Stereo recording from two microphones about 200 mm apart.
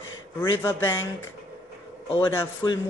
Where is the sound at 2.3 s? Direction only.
20° left (ahead or behind).